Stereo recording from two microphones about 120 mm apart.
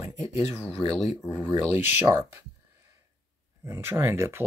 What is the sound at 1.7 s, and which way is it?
Speech, 15° right (ahead or behind).